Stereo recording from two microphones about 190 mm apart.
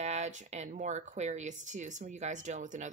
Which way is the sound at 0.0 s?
35° right (ahead or behind).